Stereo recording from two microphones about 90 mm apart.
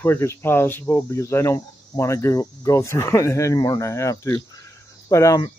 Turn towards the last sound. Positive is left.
turn(degrees=35)  # may be behind; listen again after turning